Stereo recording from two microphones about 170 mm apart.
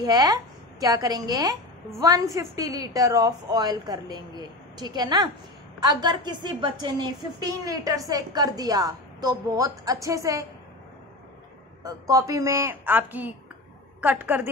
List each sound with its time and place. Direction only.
0.0 s a woman's voice: 25° right (ahead or behind)
11.8 s a woman's voice: 20° right (ahead or behind)